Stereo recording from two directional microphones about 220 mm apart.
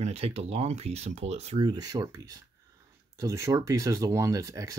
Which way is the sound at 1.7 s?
15° right (ahead or behind).